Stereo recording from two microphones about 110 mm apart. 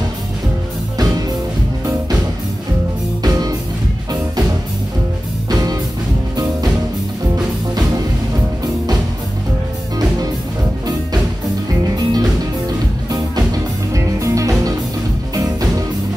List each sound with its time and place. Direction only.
3.2 s music: 35° right (ahead or behind)
5.5 s music: 35° right (ahead or behind)
7.3 s music: 35° right (ahead or behind)
12.1 s music: 35° right (ahead or behind)